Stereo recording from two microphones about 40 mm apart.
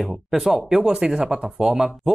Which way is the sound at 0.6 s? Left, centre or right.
Centre.